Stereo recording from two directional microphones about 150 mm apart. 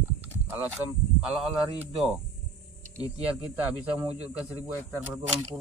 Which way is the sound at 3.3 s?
10° right (ahead or behind).